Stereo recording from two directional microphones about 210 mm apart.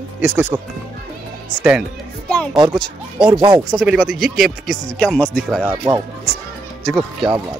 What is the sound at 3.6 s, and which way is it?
Speech, centre (ahead or behind).